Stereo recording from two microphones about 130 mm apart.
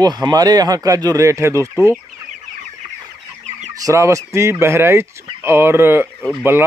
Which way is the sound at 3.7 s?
25° right (ahead or behind).